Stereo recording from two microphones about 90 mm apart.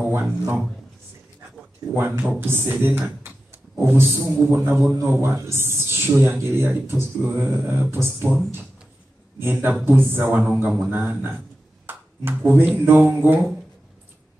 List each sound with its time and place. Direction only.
0.1 s speech: 25° right (ahead or behind)
2.0 s speech: 25° right (ahead or behind)
9.4 s speech: 25° right (ahead or behind)